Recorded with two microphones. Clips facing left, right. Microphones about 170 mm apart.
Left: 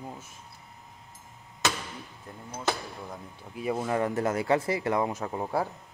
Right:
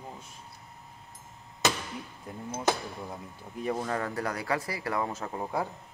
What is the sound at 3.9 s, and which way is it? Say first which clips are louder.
Speech: left 5 dB; 20° left (ahead or behind).